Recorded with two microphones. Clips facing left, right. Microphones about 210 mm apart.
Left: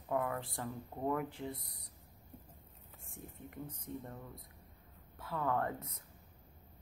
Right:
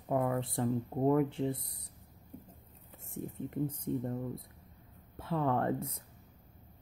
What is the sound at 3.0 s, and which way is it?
Speech, 25° right (ahead or behind).